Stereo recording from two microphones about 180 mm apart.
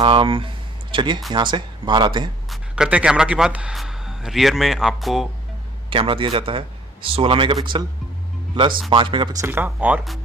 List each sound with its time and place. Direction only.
0.0 s speech: 30° right (ahead or behind)
2.5 s a man's voice: 5° right (ahead or behind)
5.9 s a man's voice: 30° right (ahead or behind)
8.9 s speech: 25° right (ahead or behind); by 10.1 s 10° right (ahead or behind)